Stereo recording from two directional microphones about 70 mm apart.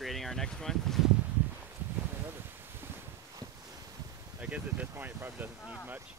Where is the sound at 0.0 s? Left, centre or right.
Centre.